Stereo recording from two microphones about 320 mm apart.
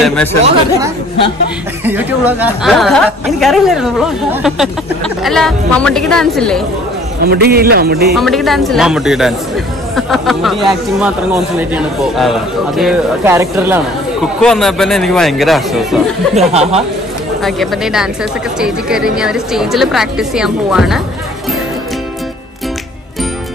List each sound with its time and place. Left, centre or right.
0.0 s speech: centre
0.5 s speech: centre
7.2 s speech: right
8.1 s speech: centre
16.3 s speech: centre
17.4 s speech: centre